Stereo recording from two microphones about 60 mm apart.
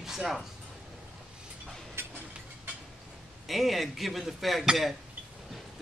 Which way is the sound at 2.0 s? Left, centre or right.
Right.